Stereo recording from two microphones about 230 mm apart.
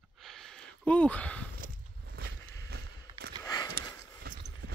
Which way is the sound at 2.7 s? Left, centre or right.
Right.